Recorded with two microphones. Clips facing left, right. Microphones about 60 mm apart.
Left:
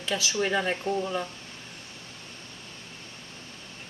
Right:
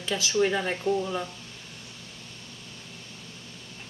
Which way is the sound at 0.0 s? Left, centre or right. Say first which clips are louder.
Right 3 dB; centre.